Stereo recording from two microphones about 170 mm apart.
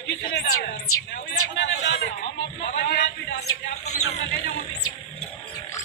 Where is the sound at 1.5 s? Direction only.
90° left.